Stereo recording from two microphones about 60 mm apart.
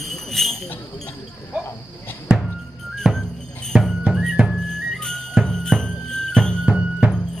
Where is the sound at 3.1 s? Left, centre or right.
Centre.